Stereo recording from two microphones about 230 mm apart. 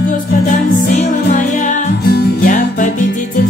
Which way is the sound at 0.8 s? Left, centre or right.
Left.